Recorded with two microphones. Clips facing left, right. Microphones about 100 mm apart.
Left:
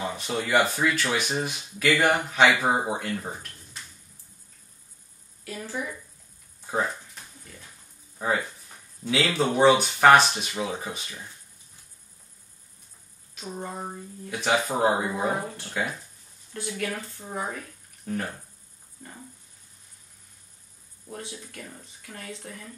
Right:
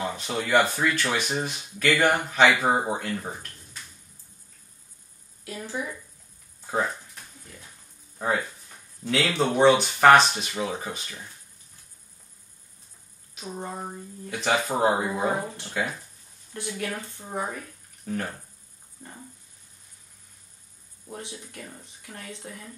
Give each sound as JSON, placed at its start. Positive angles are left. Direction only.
{"t": 0.0, "sound": "a sound", "side_deg": 5}
{"t": 0.4, "sound": "speech", "side_deg": 0}
{"t": 5.4, "sound": "speech", "side_deg": -15}
{"t": 6.6, "sound": "a sound", "side_deg": 0}
{"t": 8.2, "sound": "speech", "side_deg": 0}
{"t": 13.3, "sound": "a sound", "side_deg": -15}
{"t": 13.8, "sound": "speech", "side_deg": 0}
{"t": 15.3, "sound": "speech", "side_deg": -20}
{"t": 16.7, "sound": "speech", "side_deg": -20}
{"t": 18.0, "sound": "speech", "side_deg": 0}
{"t": 21.1, "sound": "speech", "side_deg": -15}